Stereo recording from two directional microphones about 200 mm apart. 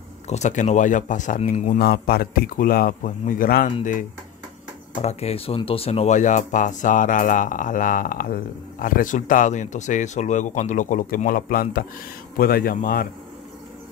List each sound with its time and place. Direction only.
0.3 s speech: 35° left (ahead or behind)
5.0 s speech: 30° left (ahead or behind); by 13.1 s 45° left (ahead or behind)